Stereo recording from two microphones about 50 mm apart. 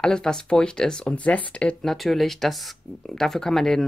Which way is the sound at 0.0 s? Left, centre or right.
Centre.